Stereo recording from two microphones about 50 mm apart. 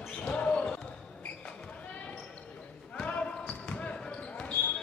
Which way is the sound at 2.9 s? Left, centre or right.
Left.